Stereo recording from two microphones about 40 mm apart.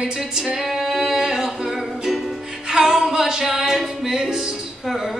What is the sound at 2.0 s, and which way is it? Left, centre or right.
Music, centre.